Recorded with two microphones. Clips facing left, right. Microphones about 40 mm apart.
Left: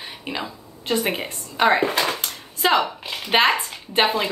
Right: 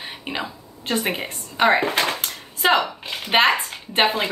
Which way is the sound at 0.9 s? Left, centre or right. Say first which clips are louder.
Left 1 dB; centre.